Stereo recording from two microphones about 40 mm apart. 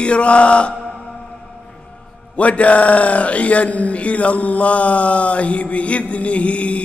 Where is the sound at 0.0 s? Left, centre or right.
Left.